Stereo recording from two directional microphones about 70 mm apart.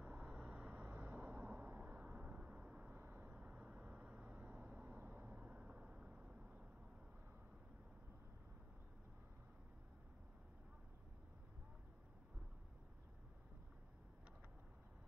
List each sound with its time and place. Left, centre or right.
0.0 s vehicle: right
4.9 s vehicle: right; by 6.6 s centre